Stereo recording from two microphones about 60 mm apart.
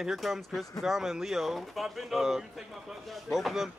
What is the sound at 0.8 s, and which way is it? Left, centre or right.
A man's voice, centre.